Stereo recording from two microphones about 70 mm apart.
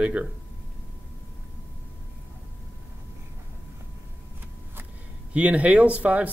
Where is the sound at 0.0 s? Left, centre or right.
Right.